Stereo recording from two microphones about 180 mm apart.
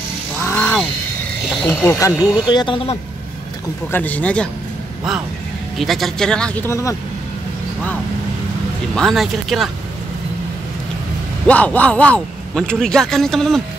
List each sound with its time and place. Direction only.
0.4 s a sound: 10° left (ahead or behind)
1.7 s speech: 15° left (ahead or behind); by 3.0 s 30° left (ahead or behind)
3.9 s speech: 10° left (ahead or behind)
5.8 s a man's voice: centre (ahead or behind); by 7.0 s 15° left (ahead or behind)
8.9 s a man's voice: centre (ahead or behind)
11.4 s a man's voice: 10° left (ahead or behind)